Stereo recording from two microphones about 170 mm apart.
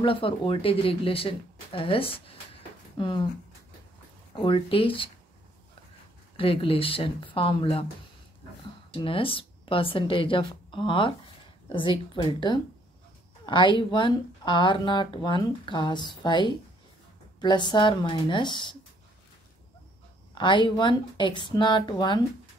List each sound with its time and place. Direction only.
0.0 s speech: 30° left (ahead or behind)
4.3 s speech: 30° left (ahead or behind)
6.3 s speech: 30° left (ahead or behind)
8.9 s speech: 30° left (ahead or behind)
20.3 s speech: 30° left (ahead or behind)